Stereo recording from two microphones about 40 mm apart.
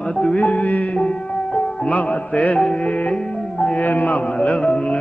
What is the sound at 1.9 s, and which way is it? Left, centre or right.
Music, left.